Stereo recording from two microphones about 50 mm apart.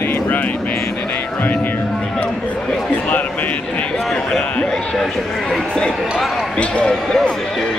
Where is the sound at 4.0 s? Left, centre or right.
Centre.